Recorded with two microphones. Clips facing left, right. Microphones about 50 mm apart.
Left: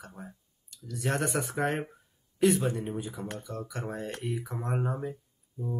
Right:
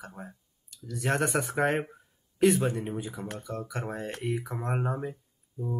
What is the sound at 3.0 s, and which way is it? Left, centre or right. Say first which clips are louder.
Speech: right 1 dB; centre.